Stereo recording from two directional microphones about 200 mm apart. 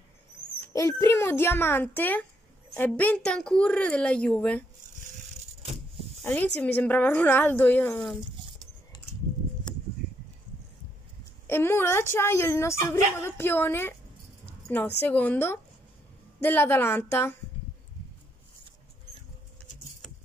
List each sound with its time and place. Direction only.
0.7 s a woman's voice: 15° left (ahead or behind)
6.2 s speech: 10° left (ahead or behind)
11.4 s speech: 10° left (ahead or behind)
15.0 s speech: 10° left (ahead or behind)